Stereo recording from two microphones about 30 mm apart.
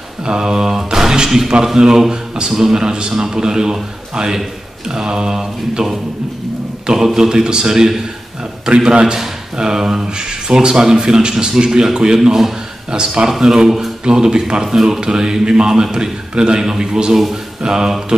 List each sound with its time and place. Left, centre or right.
0.2 s speech: right
0.9 s a sound: right
2.5 s speech: centre
7.2 s speech: right
12.3 s speech: centre
12.9 s speech: right
13.3 s speech: centre